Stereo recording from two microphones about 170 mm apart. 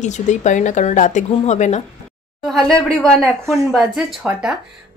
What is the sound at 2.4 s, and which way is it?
Speech, centre (ahead or behind).